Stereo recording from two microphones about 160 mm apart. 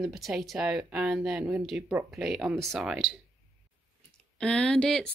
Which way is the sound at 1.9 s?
20° right (ahead or behind).